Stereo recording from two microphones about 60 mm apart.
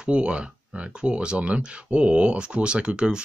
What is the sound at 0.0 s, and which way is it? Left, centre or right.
Speech, centre.